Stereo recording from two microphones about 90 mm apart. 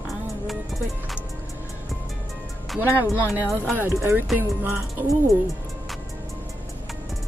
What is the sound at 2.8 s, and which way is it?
Speech, 20° right (ahead or behind).